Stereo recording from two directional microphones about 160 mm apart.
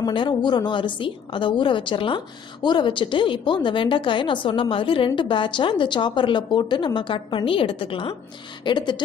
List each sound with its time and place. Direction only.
0.0 s a woman's voice: 30° left (ahead or behind)